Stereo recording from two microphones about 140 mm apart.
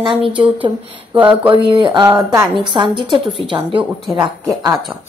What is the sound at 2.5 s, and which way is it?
Speech, 35° right (ahead or behind).